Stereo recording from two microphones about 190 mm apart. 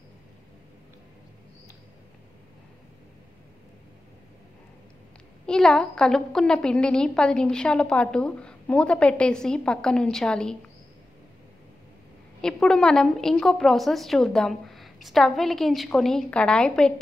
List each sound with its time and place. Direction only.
5.5 s a woman's voice: 5° left (ahead or behind)
12.4 s a woman's voice: 5° left (ahead or behind)